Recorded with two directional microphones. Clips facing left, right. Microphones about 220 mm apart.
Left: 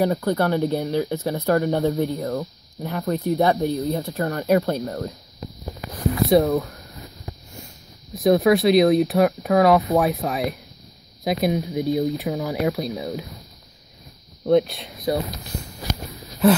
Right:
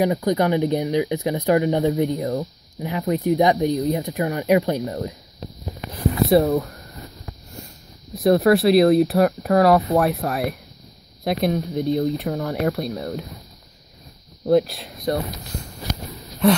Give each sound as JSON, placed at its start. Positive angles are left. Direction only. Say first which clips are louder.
{"t": 0.0, "sound": "speech", "louder": "right 1 dB", "side_deg": -15}
{"t": 8.2, "sound": "speech", "louder": "right 1 dB", "side_deg": 0}
{"t": 14.4, "sound": "speech", "louder": "even", "side_deg": 0}
{"t": 16.1, "sound": "a sound", "louder": "left 1 dB", "side_deg": 5}